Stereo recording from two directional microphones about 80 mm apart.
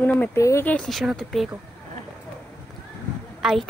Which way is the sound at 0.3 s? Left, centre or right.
Left.